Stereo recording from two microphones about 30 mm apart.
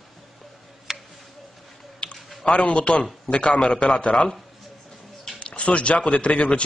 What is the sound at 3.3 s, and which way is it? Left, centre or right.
A man's voice, left.